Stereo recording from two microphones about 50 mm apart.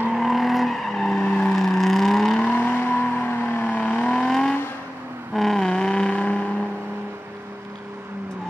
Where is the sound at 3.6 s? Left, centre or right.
Left.